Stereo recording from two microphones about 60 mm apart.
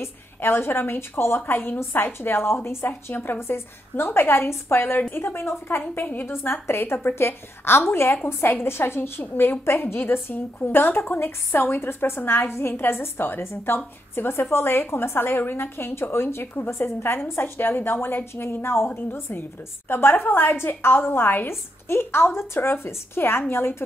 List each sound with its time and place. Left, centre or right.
0.0 s a woman's voice: left
2.9 s a woman's voice: left